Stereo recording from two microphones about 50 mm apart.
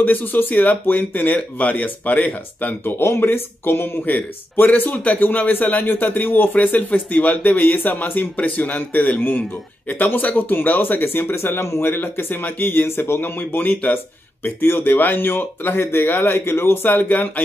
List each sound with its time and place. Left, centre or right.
0.0 s speech: left
2.8 s speech: left
4.0 s speech: left
12.8 s speech: left
16.9 s speech: left